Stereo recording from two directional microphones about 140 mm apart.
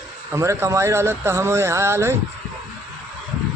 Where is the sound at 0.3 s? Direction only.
20° right (ahead or behind).